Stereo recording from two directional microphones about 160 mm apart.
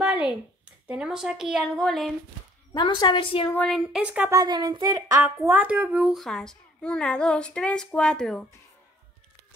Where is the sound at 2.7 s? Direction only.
30° left (ahead or behind).